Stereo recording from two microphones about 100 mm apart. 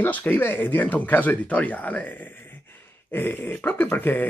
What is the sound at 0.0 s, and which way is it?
Speech, 20° left (ahead or behind).